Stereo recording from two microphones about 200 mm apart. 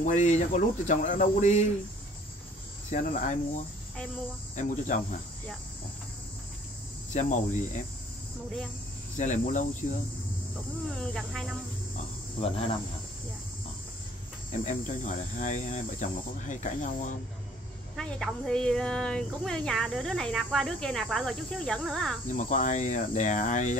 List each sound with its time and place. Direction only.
0.0 s speech: 35° left (ahead or behind)
2.9 s speech: 40° left (ahead or behind)
7.1 s speech: 40° left (ahead or behind)
9.1 s speech: 35° left (ahead or behind)
11.0 s speech: 5° left (ahead or behind)
12.4 s speech: 30° left (ahead or behind)
14.5 s speech: 40° left (ahead or behind)
17.9 s speech: 5° left (ahead or behind)
22.3 s speech: 40° left (ahead or behind)